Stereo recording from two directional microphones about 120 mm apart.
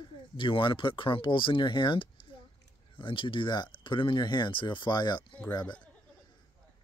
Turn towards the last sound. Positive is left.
turn(degrees=35)  # may be behind; listen again after turning